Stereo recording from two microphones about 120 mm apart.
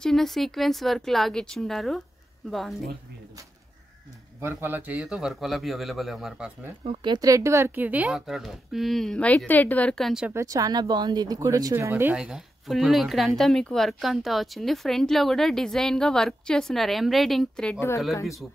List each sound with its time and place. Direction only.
0.0 s a woman's voice: 5° left (ahead or behind)
4.4 s a woman's voice: 20° right (ahead or behind)
6.9 s a woman's voice: 40° right (ahead or behind); by 10.2 s centre (ahead or behind)
10.3 s speech: 30° right (ahead or behind)
11.7 s speech: 20° right (ahead or behind)
12.2 s a woman's voice: 5° right (ahead or behind)
17.7 s speech: 20° left (ahead or behind)